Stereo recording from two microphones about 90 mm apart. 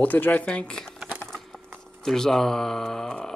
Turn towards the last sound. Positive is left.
turn(degrees=5)  # may be behind; listen again after turning